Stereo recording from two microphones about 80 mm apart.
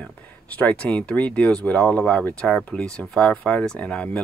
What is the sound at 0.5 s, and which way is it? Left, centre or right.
Speech, centre.